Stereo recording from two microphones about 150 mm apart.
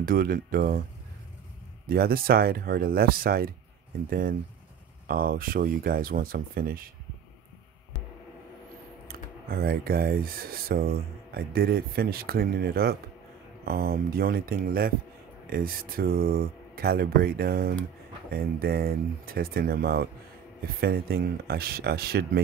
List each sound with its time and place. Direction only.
0.0 s speech: 75° right (ahead or behind)
1.9 s speech: 85° right
4.1 s speech: 70° right (ahead or behind)
9.0 s speech: 85° right